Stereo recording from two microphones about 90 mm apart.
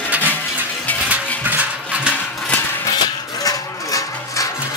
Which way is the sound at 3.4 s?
40° left (ahead or behind).